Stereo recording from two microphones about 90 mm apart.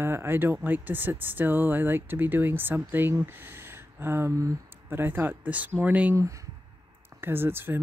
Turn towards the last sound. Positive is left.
turn(degrees=-25)  # may be behind; listen again after turning